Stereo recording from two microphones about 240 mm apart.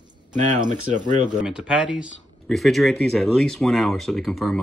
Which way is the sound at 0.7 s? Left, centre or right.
Right.